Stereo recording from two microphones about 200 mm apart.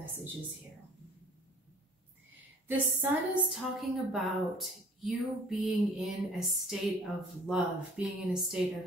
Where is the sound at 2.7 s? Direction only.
5° right (ahead or behind).